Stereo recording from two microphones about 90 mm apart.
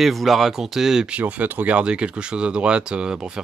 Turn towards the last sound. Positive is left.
turn(degrees=-10)  # may be behind; listen again after turning